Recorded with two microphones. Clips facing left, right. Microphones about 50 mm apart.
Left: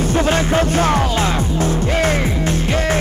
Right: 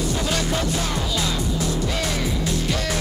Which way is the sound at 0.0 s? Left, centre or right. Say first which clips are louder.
Left 7 dB; left.